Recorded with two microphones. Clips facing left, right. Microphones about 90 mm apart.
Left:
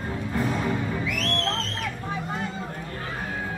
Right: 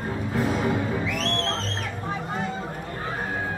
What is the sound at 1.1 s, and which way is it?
Music, 30° right (ahead or behind).